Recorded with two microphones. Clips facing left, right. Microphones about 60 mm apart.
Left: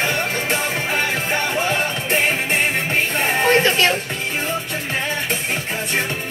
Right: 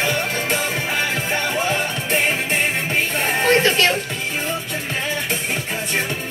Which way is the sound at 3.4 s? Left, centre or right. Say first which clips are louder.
Even; centre.